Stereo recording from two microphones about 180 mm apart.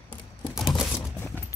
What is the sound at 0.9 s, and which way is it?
Typing, 15° left (ahead or behind).